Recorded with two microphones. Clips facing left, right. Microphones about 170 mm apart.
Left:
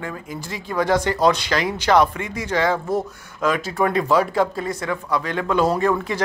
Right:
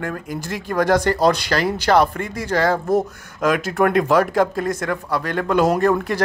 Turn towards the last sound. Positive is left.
turn(degrees=-65)  # may be behind; listen again after turning